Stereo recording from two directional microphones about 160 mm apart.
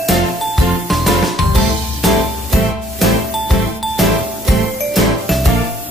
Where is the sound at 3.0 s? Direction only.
Centre (ahead or behind).